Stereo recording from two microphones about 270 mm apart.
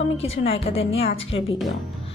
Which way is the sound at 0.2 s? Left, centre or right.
Left.